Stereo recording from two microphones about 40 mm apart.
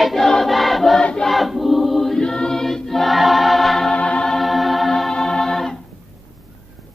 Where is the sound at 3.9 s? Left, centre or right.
Left.